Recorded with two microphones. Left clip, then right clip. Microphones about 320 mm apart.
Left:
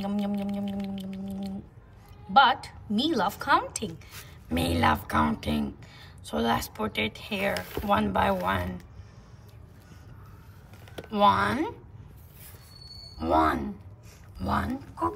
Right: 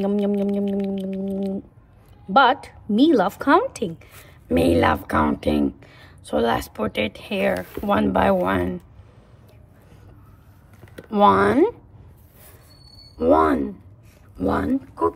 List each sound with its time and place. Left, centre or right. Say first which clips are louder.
0.0 s a sound: right 10 dB; centre
2.3 s a woman's voice: right 4 dB; centre
11.1 s a woman's voice: right 7 dB; right
13.2 s speech: right 7 dB; centre